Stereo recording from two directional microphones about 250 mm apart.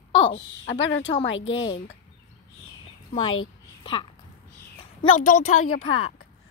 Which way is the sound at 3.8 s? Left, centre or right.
Centre.